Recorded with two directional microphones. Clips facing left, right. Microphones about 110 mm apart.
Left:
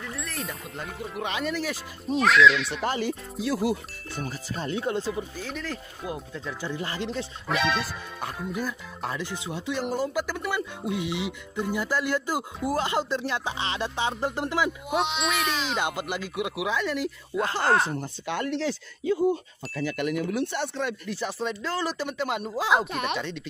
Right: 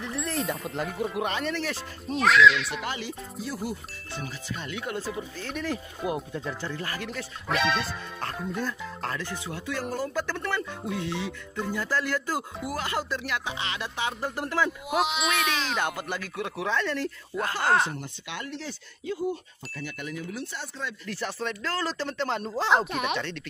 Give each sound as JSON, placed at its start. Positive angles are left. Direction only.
{"t": 0.4, "sound": "speech", "side_deg": 0}
{"t": 2.8, "sound": "speech", "side_deg": 45}
{"t": 3.3, "sound": "speech", "side_deg": 90}
{"t": 4.2, "sound": "speech", "side_deg": 40}
{"t": 5.6, "sound": "speech", "side_deg": -15}
{"t": 6.6, "sound": "speech", "side_deg": 20}
{"t": 7.4, "sound": "speech", "side_deg": 0}
{"t": 14.7, "sound": "speech", "side_deg": 0}
{"t": 15.8, "sound": "speech", "side_deg": 15}
{"t": 17.9, "sound": "speech", "side_deg": 45}
{"t": 18.5, "sound": "speech", "side_deg": 90}
{"t": 21.0, "sound": "speech", "side_deg": 15}